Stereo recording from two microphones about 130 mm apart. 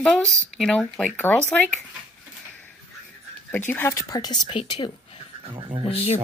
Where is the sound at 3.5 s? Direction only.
15° left (ahead or behind).